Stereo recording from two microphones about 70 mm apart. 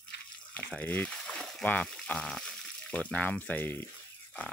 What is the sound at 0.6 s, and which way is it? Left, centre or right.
Speech, left.